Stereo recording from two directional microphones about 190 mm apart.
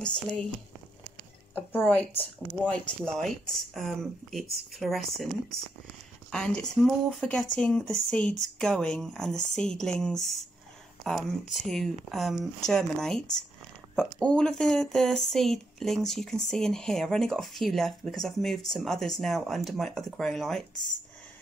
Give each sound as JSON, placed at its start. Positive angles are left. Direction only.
{"t": 0.0, "sound": "speech", "side_deg": 5}
{"t": 1.5, "sound": "speech", "side_deg": 10}
{"t": 11.5, "sound": "speech", "side_deg": 0}